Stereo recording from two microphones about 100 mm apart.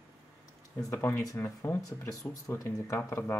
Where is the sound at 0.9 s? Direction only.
25° left (ahead or behind).